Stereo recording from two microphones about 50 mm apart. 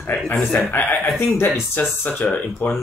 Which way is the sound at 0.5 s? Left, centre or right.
Left.